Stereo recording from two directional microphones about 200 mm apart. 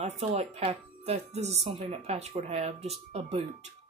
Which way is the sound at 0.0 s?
30° right (ahead or behind).